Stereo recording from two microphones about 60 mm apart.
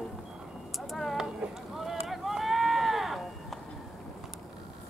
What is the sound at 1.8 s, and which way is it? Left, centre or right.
Run, centre.